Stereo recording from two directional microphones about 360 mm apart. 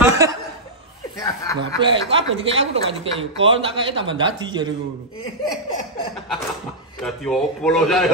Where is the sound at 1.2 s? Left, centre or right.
Centre.